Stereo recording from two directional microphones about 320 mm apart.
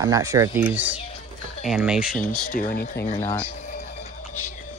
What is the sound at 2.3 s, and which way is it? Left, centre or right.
Speech, left.